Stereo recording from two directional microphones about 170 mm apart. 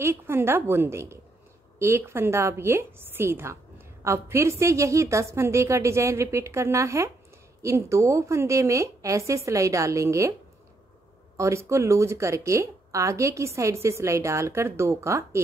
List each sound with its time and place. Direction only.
0.0 s a woman's voice: 15° right (ahead or behind)
11.3 s a woman's voice: 15° right (ahead or behind)